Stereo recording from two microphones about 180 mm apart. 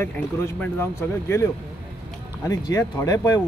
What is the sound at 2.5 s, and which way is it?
Speech, 15° left (ahead or behind).